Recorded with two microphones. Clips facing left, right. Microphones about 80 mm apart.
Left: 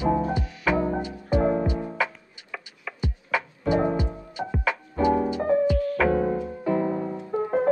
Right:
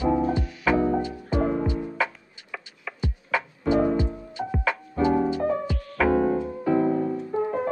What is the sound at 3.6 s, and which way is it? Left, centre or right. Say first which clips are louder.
Music: right 2 dB; centre.